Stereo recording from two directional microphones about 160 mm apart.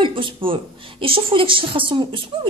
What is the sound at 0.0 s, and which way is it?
Speech, 30° right (ahead or behind).